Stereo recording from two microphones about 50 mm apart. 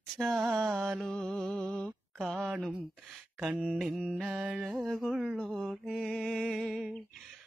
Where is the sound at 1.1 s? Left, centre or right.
Centre.